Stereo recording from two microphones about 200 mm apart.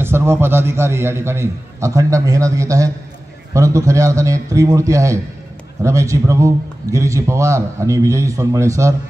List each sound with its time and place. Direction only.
0.0 s a man's voice: 10° right (ahead or behind)